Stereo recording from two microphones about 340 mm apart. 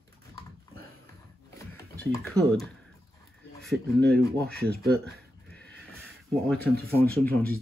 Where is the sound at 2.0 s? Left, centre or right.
Centre.